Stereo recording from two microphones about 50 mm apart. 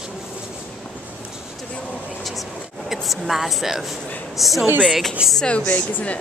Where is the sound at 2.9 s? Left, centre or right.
Centre.